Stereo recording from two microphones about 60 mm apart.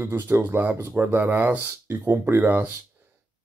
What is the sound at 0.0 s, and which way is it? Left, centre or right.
Speech, right.